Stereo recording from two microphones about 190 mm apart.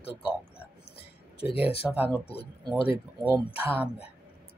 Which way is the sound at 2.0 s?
10° right (ahead or behind).